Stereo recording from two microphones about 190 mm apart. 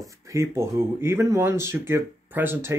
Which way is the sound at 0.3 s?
15° right (ahead or behind).